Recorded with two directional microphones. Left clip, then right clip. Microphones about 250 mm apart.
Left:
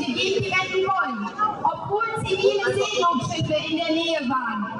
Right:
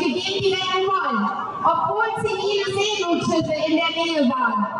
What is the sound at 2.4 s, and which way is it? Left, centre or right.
A woman's voice, centre.